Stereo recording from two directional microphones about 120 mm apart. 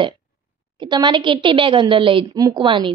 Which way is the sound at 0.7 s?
40° right (ahead or behind).